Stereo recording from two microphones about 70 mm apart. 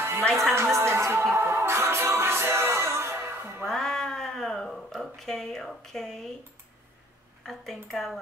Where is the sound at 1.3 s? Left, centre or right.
Right.